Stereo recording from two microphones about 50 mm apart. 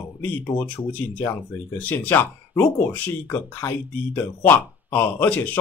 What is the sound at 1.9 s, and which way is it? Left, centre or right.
Speech, left.